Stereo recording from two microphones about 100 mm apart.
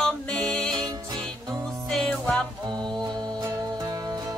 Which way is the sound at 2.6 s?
45° right (ahead or behind).